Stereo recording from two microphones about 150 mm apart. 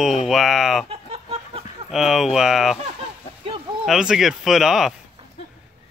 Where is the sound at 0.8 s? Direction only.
40° right (ahead or behind).